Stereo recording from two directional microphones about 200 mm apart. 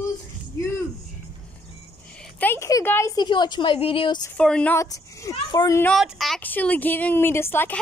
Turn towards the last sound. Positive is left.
turn(degrees=10)  # may be behind; listen again after turning